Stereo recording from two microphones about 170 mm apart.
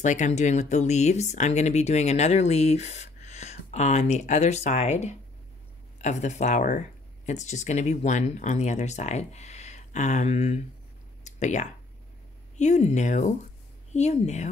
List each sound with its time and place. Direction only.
0.0 s speech: 45° left (ahead or behind)
11.2 s a sound: 45° left (ahead or behind)
12.5 s speech: 45° left (ahead or behind)